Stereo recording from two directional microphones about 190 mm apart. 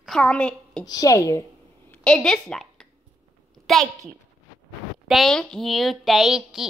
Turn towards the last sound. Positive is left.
turn(degrees=0)  # may be behind; listen again after turning